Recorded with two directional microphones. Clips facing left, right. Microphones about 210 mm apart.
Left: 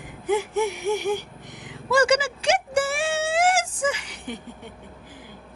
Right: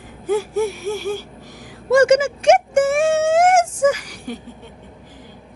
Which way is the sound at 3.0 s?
30° left (ahead or behind).